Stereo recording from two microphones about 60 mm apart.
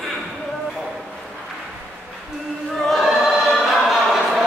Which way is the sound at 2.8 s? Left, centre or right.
Centre.